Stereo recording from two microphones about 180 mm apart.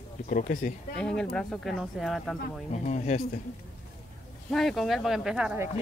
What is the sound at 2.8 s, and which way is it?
Speech, 40° left (ahead or behind).